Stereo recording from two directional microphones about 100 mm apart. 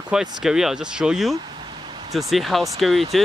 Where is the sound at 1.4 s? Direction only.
50° right (ahead or behind).